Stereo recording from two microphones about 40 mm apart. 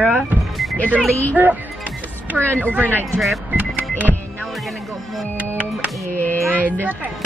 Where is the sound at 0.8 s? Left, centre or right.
Right.